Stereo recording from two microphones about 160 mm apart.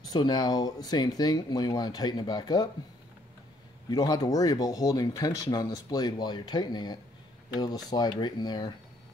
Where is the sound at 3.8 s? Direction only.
25° left (ahead or behind).